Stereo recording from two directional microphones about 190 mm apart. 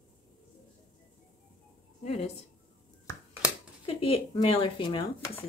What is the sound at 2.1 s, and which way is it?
Speech, 30° left (ahead or behind).